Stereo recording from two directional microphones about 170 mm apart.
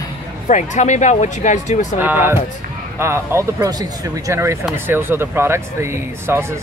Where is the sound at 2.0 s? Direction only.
10° right (ahead or behind).